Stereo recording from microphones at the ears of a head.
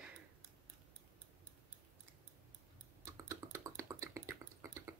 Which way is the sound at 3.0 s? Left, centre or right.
Right.